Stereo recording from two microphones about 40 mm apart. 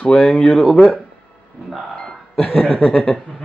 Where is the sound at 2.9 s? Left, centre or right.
Centre.